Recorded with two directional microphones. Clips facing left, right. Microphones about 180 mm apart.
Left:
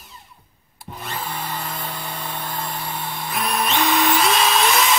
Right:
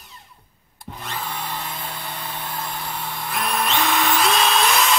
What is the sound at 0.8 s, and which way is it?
Vacuum cleaner, centre (ahead or behind).